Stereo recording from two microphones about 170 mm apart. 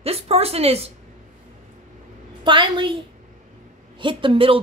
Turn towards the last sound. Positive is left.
turn(degrees=-30)  # may be behind; listen again after turning